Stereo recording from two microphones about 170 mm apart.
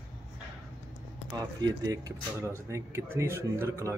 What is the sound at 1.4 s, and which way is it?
Speech, 20° right (ahead or behind).